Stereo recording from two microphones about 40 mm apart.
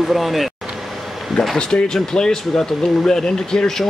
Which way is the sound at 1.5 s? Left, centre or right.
Left.